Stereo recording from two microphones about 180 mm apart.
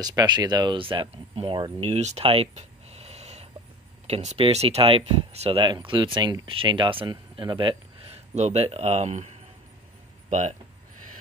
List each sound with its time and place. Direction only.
0.0 s speech: 20° right (ahead or behind); by 9.3 s 40° right (ahead or behind)